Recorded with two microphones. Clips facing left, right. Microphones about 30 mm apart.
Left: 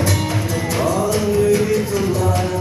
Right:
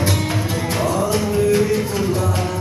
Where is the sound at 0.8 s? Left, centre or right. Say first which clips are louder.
Left 1 dB; right.